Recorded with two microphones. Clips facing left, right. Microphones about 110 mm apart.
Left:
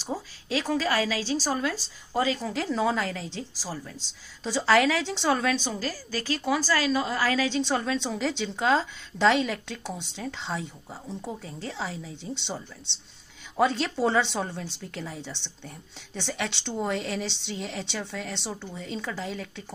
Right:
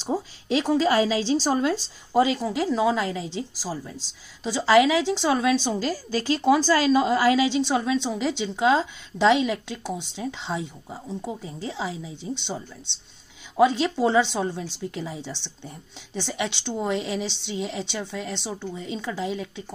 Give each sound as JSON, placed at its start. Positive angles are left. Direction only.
{"t": 0.0, "sound": "a woman's voice", "side_deg": -20}